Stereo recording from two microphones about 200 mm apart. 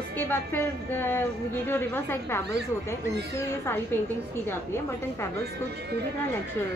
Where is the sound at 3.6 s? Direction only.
10° left (ahead or behind).